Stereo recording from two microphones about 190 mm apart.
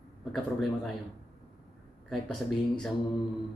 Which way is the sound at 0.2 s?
Centre (ahead or behind).